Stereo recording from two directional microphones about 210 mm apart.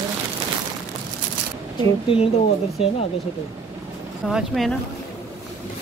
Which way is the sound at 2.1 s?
25° left (ahead or behind).